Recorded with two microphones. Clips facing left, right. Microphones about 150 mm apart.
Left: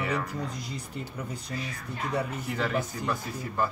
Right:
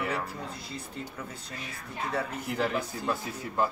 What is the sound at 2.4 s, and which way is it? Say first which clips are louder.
Speech: right 1 dB; 10° right (ahead or behind).